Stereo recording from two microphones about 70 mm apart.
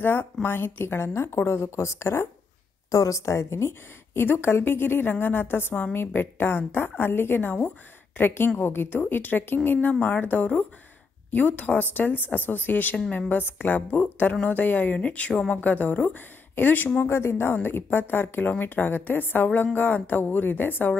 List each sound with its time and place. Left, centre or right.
0.0 s a woman's voice: left
8.5 s a woman's voice: left